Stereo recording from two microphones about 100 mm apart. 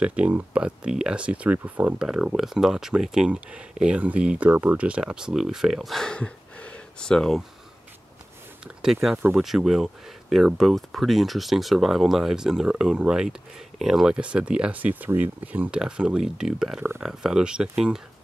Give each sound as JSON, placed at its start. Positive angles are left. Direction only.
{"t": 0.0, "sound": "speech", "side_deg": -15}
{"t": 9.4, "sound": "speech", "side_deg": -5}